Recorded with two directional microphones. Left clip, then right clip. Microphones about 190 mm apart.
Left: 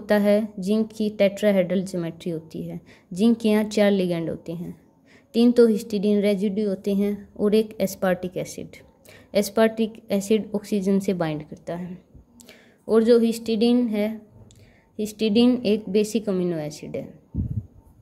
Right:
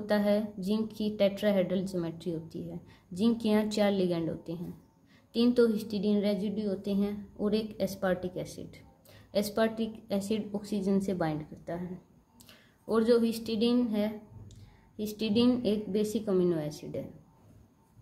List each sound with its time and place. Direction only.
0.0 s a woman's voice: 35° left (ahead or behind)